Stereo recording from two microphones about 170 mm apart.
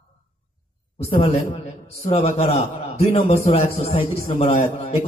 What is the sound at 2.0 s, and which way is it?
A man's voice, 35° left (ahead or behind).